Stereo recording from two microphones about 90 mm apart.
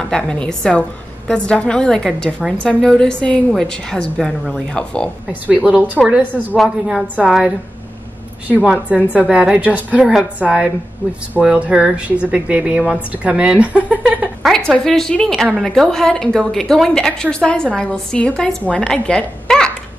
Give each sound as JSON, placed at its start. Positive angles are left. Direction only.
{"t": 0.0, "sound": "a woman's voice", "side_deg": 10}
{"t": 6.0, "sound": "a woman's voice", "side_deg": -5}
{"t": 8.9, "sound": "speech", "side_deg": -15}
{"t": 14.4, "sound": "a woman's voice", "side_deg": 5}